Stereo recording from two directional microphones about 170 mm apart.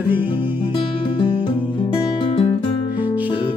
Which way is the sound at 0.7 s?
30° left (ahead or behind).